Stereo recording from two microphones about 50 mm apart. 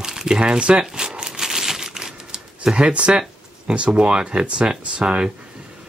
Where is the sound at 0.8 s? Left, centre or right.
Centre.